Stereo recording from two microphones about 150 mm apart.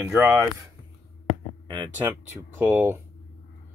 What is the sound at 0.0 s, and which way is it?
Speech, 20° right (ahead or behind).